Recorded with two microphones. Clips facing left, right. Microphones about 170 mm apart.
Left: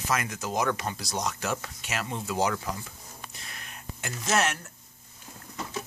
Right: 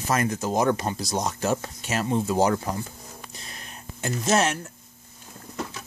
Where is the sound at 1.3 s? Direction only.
35° right (ahead or behind).